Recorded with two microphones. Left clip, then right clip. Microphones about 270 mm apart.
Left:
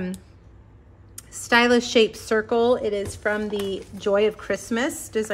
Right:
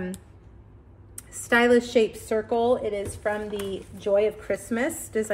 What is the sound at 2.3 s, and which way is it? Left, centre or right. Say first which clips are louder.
A woman's voice: left 3 dB; left.